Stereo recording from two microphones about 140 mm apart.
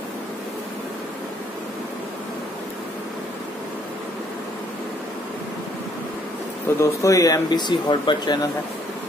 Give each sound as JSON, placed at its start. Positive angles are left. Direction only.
{"t": 6.8, "sound": "speech", "side_deg": 20}